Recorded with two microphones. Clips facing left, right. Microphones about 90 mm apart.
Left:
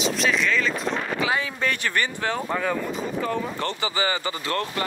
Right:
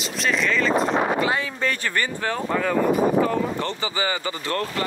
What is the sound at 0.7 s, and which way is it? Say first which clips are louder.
Speech: right 7 dB; 40° right (ahead or behind).